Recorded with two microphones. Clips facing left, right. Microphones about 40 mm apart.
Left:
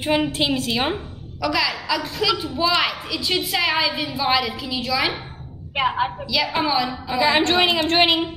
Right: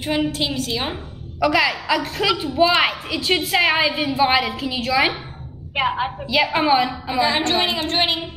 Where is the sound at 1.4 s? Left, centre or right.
Right.